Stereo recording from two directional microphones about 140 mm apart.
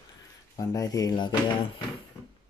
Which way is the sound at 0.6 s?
25° left (ahead or behind).